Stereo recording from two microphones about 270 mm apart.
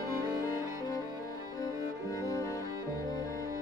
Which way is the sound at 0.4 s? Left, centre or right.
Centre.